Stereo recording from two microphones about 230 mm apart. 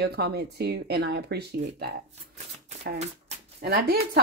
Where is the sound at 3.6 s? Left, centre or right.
Right.